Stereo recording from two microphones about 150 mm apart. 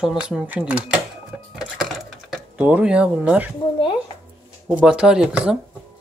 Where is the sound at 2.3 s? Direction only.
10° right (ahead or behind).